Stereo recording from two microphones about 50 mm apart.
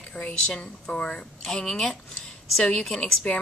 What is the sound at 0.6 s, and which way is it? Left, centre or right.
Speech, centre.